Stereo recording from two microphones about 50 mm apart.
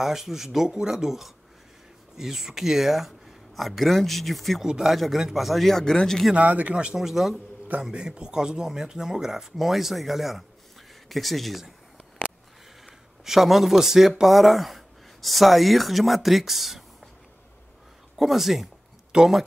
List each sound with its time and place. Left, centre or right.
0.0 s speech: centre
4.6 s speech: centre
6.3 s speech: right
7.0 s speech: centre
7.8 s speech: centre
12.8 s speech: centre
18.1 s speech: centre